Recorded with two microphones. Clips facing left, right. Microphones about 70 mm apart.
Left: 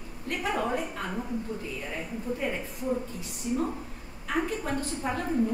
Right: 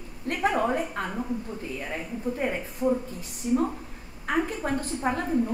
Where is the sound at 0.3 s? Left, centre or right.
Right.